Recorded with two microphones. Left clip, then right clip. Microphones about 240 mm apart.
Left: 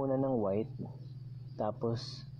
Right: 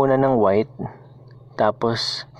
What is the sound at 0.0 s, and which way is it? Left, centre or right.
Speech, right.